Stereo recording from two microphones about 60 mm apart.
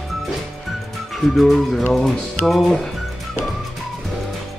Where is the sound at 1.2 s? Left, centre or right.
Centre.